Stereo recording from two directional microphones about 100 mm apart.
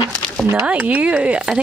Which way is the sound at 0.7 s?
15° right (ahead or behind).